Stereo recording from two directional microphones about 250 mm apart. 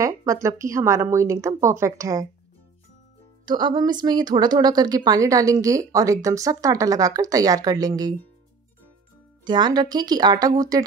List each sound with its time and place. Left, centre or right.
0.0 s speech: centre
3.4 s speech: centre
9.4 s speech: centre